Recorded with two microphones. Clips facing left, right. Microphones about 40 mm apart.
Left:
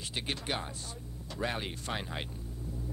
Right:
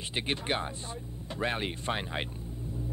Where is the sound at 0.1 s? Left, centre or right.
Right.